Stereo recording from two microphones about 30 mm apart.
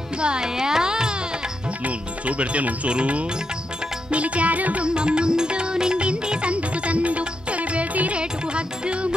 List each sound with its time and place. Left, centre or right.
0.2 s music: right
0.6 s carnatic music: right
1.9 s speech: right
2.9 s music: right
4.8 s music: right
6.5 s music: right
8.1 s music: right